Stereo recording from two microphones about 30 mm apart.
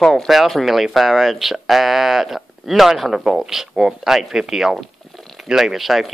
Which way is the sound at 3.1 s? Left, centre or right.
Centre.